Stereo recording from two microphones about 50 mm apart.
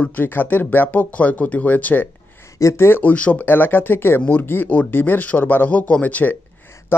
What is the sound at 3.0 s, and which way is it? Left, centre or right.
Speech, left.